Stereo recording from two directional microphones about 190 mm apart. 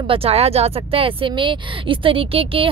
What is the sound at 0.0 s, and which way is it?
Speech, 30° right (ahead or behind).